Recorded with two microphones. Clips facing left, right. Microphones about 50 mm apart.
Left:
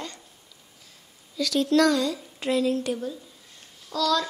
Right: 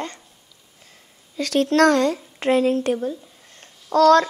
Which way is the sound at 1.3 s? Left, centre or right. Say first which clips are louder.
Right 3 dB; right.